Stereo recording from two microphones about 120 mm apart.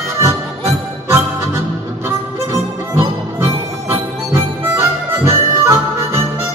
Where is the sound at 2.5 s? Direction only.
25° right (ahead or behind).